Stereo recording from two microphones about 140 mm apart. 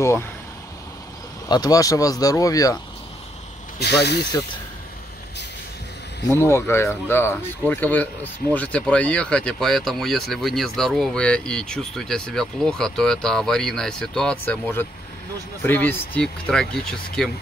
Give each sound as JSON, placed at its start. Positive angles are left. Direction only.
{"t": 0.0, "sound": "speech", "side_deg": 20}
{"t": 1.5, "sound": "speech", "side_deg": 25}
{"t": 6.3, "sound": "speech", "side_deg": 20}